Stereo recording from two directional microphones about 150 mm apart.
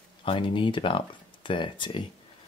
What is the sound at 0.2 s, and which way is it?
Speech, 35° left (ahead or behind).